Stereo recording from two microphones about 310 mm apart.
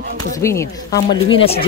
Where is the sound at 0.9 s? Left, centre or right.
Left.